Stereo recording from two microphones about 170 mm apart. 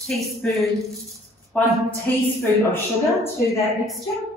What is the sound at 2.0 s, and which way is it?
Speech, 10° left (ahead or behind).